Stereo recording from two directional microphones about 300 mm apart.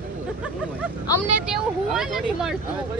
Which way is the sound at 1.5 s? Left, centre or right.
Centre.